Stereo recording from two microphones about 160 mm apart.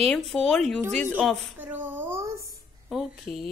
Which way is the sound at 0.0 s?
5° left (ahead or behind).